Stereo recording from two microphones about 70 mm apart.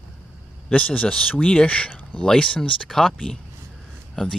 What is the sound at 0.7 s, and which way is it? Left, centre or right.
Speech, centre.